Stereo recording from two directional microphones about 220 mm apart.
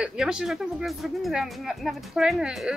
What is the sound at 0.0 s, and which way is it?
Speech, 5° right (ahead or behind).